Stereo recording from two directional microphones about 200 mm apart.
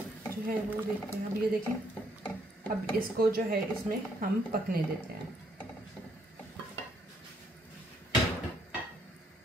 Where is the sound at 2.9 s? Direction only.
50° right (ahead or behind).